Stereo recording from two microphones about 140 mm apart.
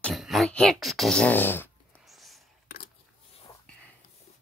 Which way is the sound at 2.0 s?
Centre (ahead or behind).